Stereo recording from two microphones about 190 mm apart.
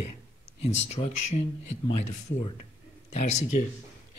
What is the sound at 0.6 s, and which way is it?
Speech, 35° left (ahead or behind).